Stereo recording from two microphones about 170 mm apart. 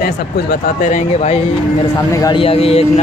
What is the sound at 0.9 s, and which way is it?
Speech, 40° left (ahead or behind).